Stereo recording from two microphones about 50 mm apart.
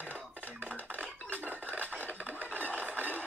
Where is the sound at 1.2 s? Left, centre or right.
Right.